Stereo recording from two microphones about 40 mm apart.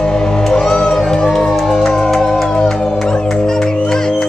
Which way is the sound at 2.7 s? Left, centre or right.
Centre.